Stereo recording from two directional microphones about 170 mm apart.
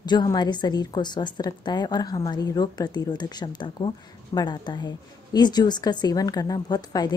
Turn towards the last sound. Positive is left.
turn(degrees=25)  # may be behind; listen again after turning